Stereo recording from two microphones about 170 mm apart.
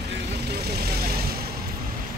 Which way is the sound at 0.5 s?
65° right (ahead or behind).